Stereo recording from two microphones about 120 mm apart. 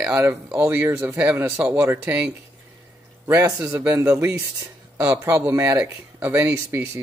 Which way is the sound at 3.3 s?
20° right (ahead or behind).